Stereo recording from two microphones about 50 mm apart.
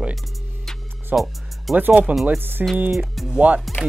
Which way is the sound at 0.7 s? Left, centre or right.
Centre.